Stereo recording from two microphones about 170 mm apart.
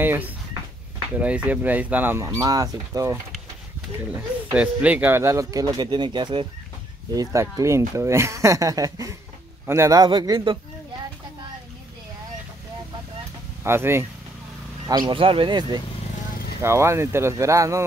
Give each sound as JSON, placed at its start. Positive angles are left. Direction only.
{"t": 0.0, "sound": "a sound", "side_deg": -10}
{"t": 1.2, "sound": "speech", "side_deg": -10}
{"t": 4.6, "sound": "speech", "side_deg": -10}
{"t": 13.7, "sound": "speech", "side_deg": -15}
{"t": 14.9, "sound": "speech", "side_deg": -25}
{"t": 16.6, "sound": "speech", "side_deg": -15}